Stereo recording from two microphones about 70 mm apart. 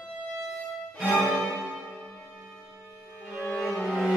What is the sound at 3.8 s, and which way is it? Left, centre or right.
Cello, centre.